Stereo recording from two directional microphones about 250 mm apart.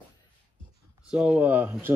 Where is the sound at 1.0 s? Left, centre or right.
Centre.